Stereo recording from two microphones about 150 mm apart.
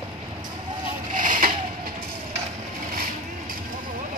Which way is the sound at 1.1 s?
60° right (ahead or behind).